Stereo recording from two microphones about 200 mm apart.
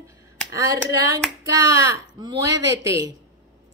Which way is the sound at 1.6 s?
15° right (ahead or behind).